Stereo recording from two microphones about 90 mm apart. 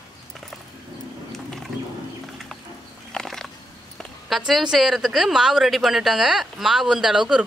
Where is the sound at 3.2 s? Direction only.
5° left (ahead or behind).